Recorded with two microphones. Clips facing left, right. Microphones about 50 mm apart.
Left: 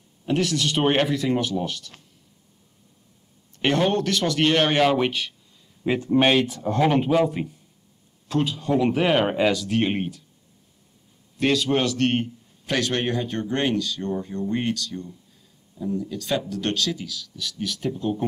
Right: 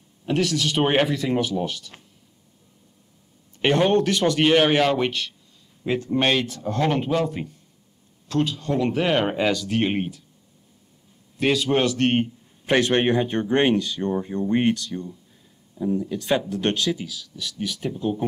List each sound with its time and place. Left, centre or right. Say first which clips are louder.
0.2 s speech: even; centre
3.5 s speech: right 3 dB; centre
4.8 s speech: left 1 dB; centre
11.3 s speech: right 1 dB; centre
12.6 s speech: right 5 dB; right; by 18.2 s centre